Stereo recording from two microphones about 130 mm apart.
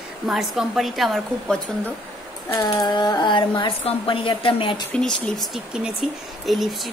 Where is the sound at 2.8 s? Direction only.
35° left (ahead or behind).